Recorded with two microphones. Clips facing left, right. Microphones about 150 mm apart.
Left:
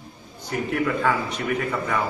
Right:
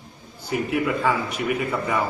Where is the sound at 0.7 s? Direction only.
5° right (ahead or behind).